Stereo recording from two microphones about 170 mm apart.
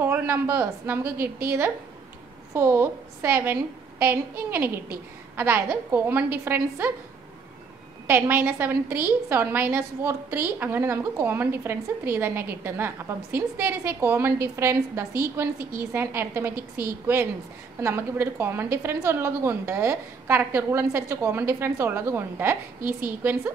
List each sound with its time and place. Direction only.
0.0 s a woman's voice: 10° right (ahead or behind)
8.1 s a woman's voice: 10° right (ahead or behind)